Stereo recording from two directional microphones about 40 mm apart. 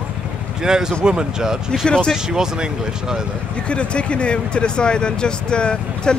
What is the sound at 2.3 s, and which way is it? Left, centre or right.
Speech, centre.